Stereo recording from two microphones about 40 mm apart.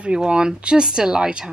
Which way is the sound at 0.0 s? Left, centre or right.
Right.